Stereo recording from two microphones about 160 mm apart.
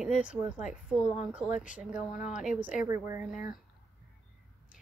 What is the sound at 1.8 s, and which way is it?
A woman's voice, 10° right (ahead or behind).